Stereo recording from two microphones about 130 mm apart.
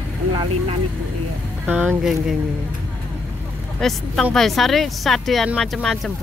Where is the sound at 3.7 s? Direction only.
5° left (ahead or behind).